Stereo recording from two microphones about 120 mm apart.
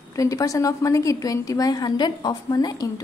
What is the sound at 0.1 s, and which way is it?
A woman's voice, 30° left (ahead or behind).